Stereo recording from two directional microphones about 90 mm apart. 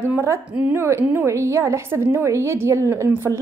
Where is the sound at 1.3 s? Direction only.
35° right (ahead or behind).